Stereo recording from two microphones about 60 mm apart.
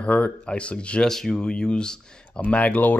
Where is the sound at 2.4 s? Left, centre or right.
Left.